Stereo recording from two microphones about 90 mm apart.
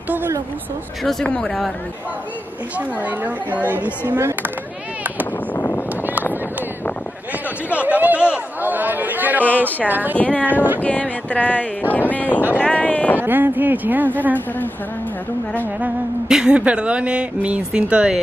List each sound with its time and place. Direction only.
1.0 s speech: 10° left (ahead or behind)
3.0 s speech: 15° right (ahead or behind)
7.7 s chatter: 15° right (ahead or behind)
9.4 s a sound: 15° left (ahead or behind)
9.8 s speech: 20° right (ahead or behind)
10.1 s speech: 15° left (ahead or behind)
10.4 s speech: 20° right (ahead or behind)
10.8 s speech: 15° left (ahead or behind)
13.2 s speech: 20° right (ahead or behind)
16.3 s speech: 10° right (ahead or behind)